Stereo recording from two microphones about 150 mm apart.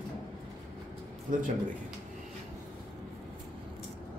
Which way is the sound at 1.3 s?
65° right (ahead or behind).